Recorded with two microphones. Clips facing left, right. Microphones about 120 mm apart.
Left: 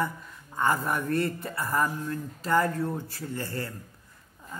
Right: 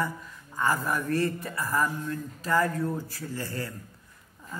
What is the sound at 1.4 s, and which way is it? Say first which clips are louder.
Speech: even; 30° left (ahead or behind).